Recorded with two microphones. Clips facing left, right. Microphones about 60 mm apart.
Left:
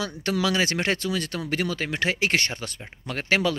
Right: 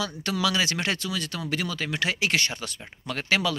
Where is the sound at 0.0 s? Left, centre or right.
Left.